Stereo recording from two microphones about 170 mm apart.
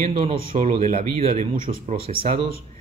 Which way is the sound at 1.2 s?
40° right (ahead or behind).